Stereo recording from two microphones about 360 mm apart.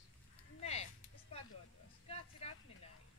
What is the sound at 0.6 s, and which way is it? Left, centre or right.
Speech, centre.